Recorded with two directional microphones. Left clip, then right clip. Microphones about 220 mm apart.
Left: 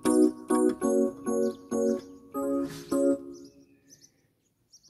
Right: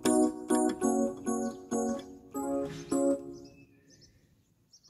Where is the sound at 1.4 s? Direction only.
55° left (ahead or behind).